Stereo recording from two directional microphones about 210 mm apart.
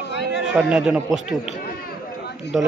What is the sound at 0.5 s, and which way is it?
Speech, 5° right (ahead or behind).